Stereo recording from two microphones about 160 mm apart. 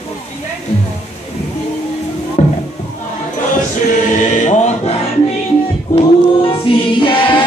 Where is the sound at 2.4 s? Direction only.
45° left (ahead or behind).